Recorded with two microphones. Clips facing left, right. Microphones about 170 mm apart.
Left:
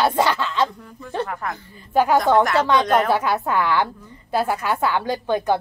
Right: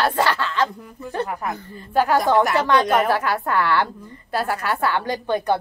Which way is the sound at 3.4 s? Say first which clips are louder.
Even; 10° left (ahead or behind).